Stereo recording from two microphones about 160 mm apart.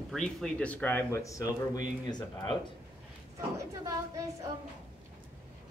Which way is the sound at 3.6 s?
20° right (ahead or behind).